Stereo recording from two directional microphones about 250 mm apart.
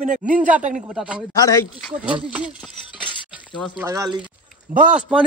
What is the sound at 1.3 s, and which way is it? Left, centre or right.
Speech, centre.